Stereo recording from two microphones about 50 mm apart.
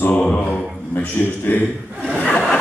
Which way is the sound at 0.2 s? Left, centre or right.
Left.